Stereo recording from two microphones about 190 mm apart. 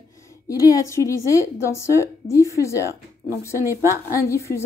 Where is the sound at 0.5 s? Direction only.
20° left (ahead or behind).